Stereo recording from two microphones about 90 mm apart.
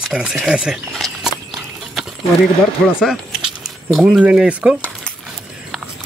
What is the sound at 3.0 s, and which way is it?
Speech, 5° right (ahead or behind).